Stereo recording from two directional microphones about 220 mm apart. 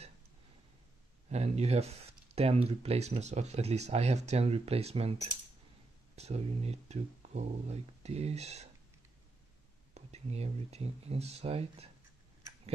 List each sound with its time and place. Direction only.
1.3 s speech: 30° right (ahead or behind)
6.1 s speech: 30° right (ahead or behind)
9.9 s speech: 30° right (ahead or behind)